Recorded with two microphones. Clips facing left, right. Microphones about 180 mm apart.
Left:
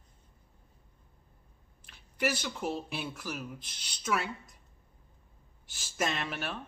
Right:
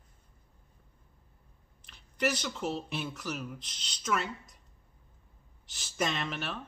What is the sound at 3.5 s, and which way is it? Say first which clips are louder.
Speech: right 1 dB; 55° left (ahead or behind).